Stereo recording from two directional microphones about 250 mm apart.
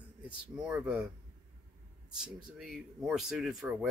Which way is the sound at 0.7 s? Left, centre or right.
Centre.